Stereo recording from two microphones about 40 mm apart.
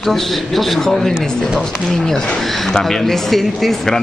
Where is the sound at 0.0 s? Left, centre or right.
Centre.